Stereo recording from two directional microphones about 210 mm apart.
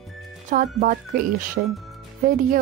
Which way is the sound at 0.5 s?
40° right (ahead or behind).